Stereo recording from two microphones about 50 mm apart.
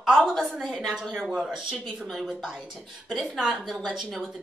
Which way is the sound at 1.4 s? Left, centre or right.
Centre.